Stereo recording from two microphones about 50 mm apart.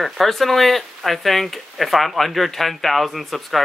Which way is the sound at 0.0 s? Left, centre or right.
Centre.